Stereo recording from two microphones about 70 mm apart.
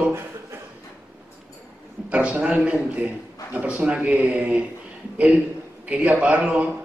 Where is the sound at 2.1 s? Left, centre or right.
Centre.